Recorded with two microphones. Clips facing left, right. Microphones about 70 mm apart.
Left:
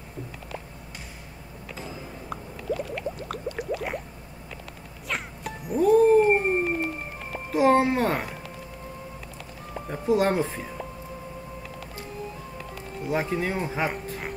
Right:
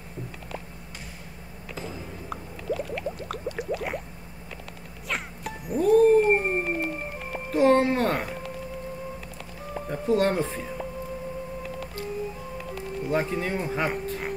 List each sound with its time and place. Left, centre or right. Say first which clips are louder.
2.2 s a sound: left 1 dB; centre
5.0 s music: even; centre
9.8 s speech: even; centre
13.1 s speech: even; centre